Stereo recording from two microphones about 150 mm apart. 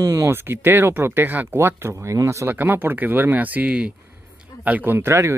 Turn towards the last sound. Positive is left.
turn(degrees=-20)  # may be behind; listen again after turning